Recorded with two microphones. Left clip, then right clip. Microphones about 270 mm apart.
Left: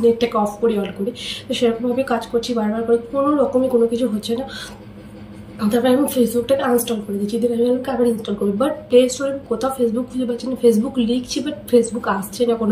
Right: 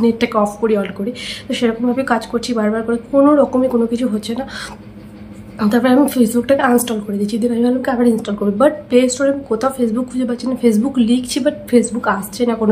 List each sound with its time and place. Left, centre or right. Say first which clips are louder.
0.0 s a woman's voice: right 1 dB; centre
5.6 s a woman's voice: right 3 dB; centre